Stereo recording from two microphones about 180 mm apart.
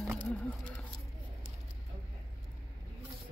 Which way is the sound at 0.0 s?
5° right (ahead or behind).